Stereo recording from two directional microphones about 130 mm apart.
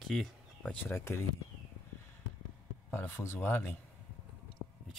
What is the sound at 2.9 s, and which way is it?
Speech, 20° left (ahead or behind).